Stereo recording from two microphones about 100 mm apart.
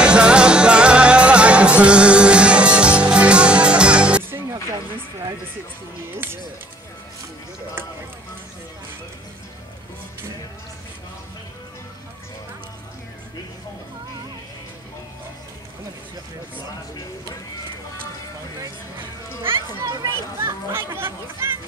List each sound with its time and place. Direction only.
0.0 s music: 10° right (ahead or behind)
6.1 s music: 20° right (ahead or behind)
19.4 s speech: 25° right (ahead or behind)
19.8 s a sound: 40° right (ahead or behind)
20.3 s chatter: 25° right (ahead or behind)